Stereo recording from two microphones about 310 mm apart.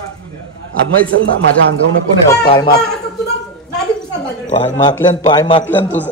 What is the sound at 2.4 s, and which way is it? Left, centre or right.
Speech, centre.